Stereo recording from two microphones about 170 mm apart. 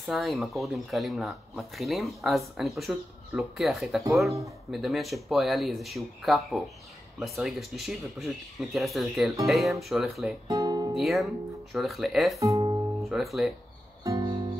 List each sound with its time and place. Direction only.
0.0 s speech: centre (ahead or behind)
10.5 s speech: 20° right (ahead or behind)
11.0 s speech: centre (ahead or behind)
12.4 s speech: 20° right (ahead or behind)
13.1 s speech: centre (ahead or behind)
14.0 s music: 20° right (ahead or behind)